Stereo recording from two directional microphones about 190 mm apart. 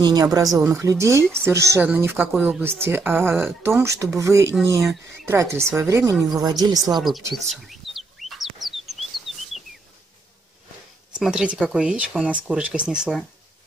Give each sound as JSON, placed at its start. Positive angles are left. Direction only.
{"t": 0.0, "sound": "speech", "side_deg": -20}
{"t": 6.9, "sound": "speech", "side_deg": 0}
{"t": 7.6, "sound": "chicken", "side_deg": 0}
{"t": 11.1, "sound": "speech", "side_deg": -5}